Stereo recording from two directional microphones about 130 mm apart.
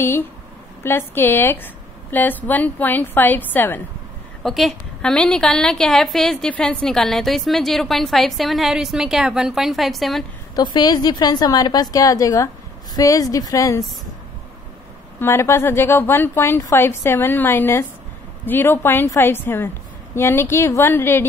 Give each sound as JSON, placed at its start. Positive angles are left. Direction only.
{"t": 0.8, "sound": "a woman's voice", "side_deg": 15}
{"t": 4.4, "sound": "a woman's voice", "side_deg": 0}
{"t": 10.5, "sound": "a woman's voice", "side_deg": 35}
{"t": 15.1, "sound": "a woman's voice", "side_deg": 20}